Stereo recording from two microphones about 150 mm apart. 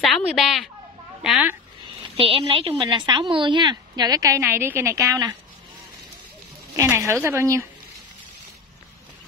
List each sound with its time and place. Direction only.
0.0 s a woman's voice: centre (ahead or behind)
2.1 s a woman's voice: 35° right (ahead or behind); by 5.3 s 20° right (ahead or behind)
6.8 s speech: 20° right (ahead or behind)